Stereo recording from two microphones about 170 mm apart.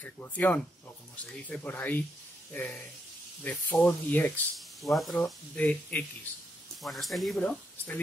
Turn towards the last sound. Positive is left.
turn(degrees=5)  # may be behind; listen again after turning